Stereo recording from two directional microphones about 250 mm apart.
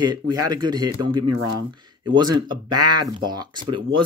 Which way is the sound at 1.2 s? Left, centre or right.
Right.